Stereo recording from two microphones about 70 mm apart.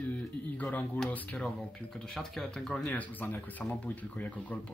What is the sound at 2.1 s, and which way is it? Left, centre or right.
Speech, centre.